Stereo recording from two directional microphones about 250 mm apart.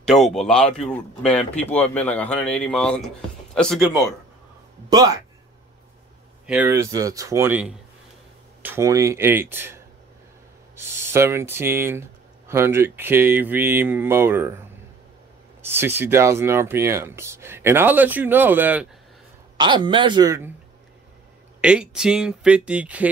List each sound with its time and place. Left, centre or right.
0.2 s speech: centre
4.8 s speech: centre
6.4 s speech: centre
10.8 s speech: centre
15.6 s speech: centre
19.5 s speech: centre
21.5 s speech: centre